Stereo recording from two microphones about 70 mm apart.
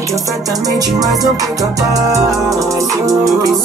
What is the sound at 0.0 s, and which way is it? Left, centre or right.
Music, right.